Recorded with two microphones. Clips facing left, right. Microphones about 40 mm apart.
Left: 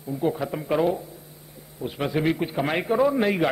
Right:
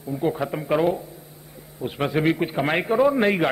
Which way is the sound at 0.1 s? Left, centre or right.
Centre.